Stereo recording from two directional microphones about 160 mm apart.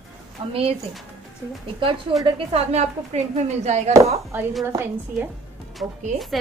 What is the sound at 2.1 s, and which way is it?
A woman's voice, 35° right (ahead or behind).